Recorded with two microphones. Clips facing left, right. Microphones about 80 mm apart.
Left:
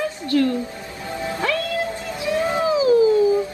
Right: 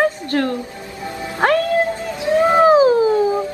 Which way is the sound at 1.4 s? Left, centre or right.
Right.